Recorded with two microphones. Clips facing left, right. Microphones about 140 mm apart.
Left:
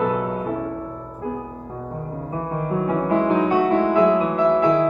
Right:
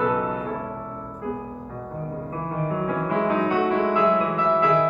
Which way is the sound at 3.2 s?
35° left (ahead or behind).